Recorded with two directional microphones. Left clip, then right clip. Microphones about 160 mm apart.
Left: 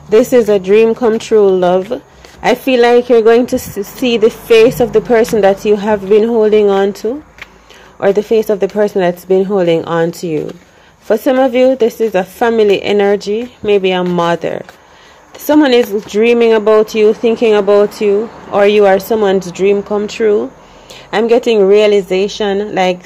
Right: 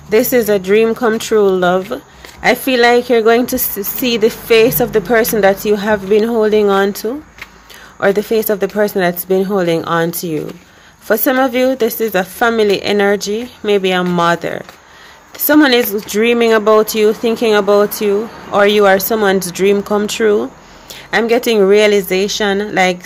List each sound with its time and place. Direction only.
0.1 s speech: 15° left (ahead or behind); by 20.4 s 5° right (ahead or behind)
20.9 s speech: 10° left (ahead or behind)